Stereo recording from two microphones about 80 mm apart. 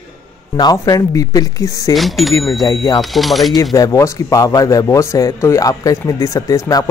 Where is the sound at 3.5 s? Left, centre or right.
Left.